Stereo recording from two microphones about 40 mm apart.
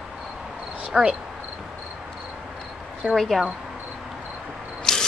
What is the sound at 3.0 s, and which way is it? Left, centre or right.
Speech, right.